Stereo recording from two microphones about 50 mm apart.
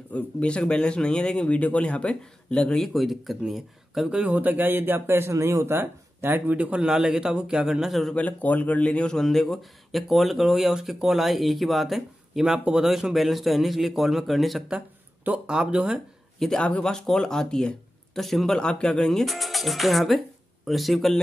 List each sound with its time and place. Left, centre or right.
0.1 s speech: left
2.9 s a man's voice: centre
4.2 s speech: right
5.3 s speech: right
6.5 s a man's voice: right
8.1 s a man's voice: left; by 12.5 s centre
12.5 s a man's voice: centre
12.8 s a man's voice: centre
15.4 s a man's voice: centre
16.3 s speech: centre
18.6 s a man's voice: centre